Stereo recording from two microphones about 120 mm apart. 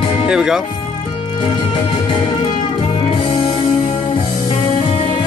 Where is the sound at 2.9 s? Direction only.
45° left (ahead or behind).